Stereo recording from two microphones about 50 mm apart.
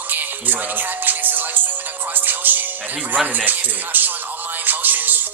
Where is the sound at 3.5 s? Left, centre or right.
Right.